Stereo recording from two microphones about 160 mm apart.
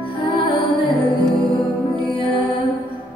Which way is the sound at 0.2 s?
35° left (ahead or behind).